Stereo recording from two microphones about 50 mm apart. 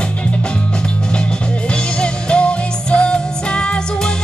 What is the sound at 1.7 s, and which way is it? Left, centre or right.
Music, centre.